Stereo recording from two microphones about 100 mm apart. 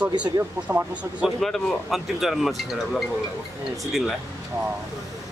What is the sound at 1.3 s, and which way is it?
Speech, centre (ahead or behind).